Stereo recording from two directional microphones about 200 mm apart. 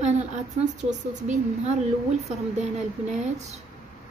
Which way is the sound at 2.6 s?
35° right (ahead or behind).